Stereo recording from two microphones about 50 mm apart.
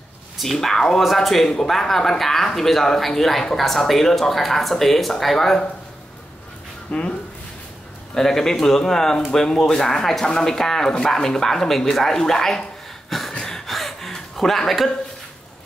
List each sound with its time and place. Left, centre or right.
0.4 s speech: centre
6.9 s speech: left
8.1 s speech: centre
13.3 s a sound: centre
13.7 s gasp: centre